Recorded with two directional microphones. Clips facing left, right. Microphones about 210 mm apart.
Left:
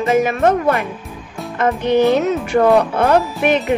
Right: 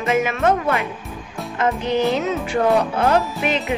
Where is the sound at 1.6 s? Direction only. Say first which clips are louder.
Left 5 dB; 60° left (ahead or behind).